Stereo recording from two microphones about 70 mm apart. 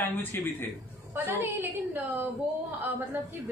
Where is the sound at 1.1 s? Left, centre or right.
Right.